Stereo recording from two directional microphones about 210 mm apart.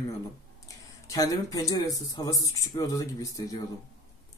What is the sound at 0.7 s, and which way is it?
Speech, 15° left (ahead or behind).